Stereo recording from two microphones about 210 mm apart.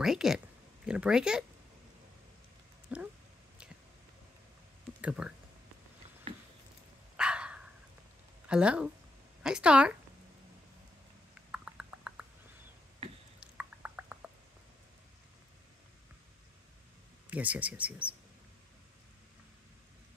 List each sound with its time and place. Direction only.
0.0 s a sound: centre (ahead or behind)
0.8 s speech: 5° right (ahead or behind)
2.9 s speech: 5° right (ahead or behind)
5.0 s speech: 5° right (ahead or behind)
7.2 s dog: 5° right (ahead or behind)
8.5 s speech: 5° right (ahead or behind)
11.5 s clip-clop: 5° right (ahead or behind)
13.4 s a sound: 5° right (ahead or behind)
17.3 s speech: 5° right (ahead or behind)